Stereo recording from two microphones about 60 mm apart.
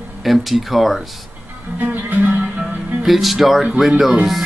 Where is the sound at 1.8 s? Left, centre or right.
Right.